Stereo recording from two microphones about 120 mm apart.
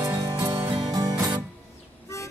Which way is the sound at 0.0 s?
25° right (ahead or behind).